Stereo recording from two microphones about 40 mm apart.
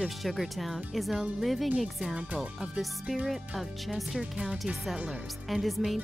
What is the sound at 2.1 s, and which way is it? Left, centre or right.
Speech, right.